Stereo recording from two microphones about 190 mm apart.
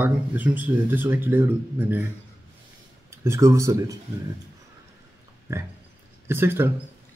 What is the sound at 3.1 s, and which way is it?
Speech, 15° right (ahead or behind).